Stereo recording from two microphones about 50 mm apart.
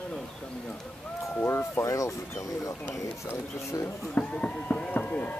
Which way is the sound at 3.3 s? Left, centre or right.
Left.